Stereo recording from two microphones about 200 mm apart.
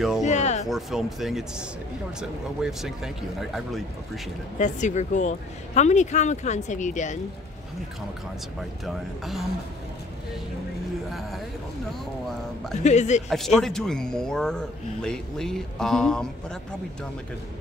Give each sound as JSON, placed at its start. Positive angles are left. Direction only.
{"t": 0.2, "sound": "music", "side_deg": 35}
{"t": 0.7, "sound": "speech", "side_deg": 0}
{"t": 4.6, "sound": "a woman's voice", "side_deg": 35}
{"t": 8.8, "sound": "speech", "side_deg": 0}
{"t": 11.1, "sound": "a sound", "side_deg": 0}
{"t": 12.8, "sound": "a woman's voice", "side_deg": 35}
{"t": 13.3, "sound": "speech", "side_deg": 0}